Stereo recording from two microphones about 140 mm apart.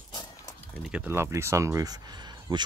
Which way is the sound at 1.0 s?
20° right (ahead or behind).